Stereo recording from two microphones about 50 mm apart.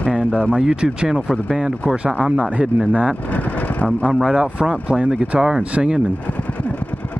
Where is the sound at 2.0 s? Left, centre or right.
Right.